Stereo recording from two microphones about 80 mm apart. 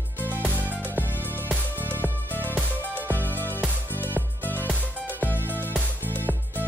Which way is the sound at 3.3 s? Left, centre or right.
Left.